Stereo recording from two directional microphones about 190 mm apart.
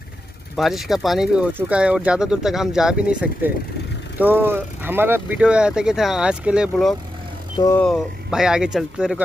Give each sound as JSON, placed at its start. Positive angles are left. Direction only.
{"t": 0.6, "sound": "speech", "side_deg": 0}
{"t": 7.5, "sound": "speech", "side_deg": 15}
{"t": 7.8, "sound": "speech", "side_deg": 0}